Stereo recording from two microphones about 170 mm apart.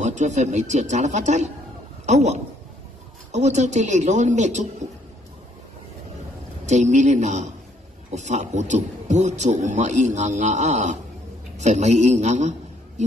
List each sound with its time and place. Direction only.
0.0 s a man's voice: 45° right (ahead or behind)
6.6 s a man's voice: 45° right (ahead or behind)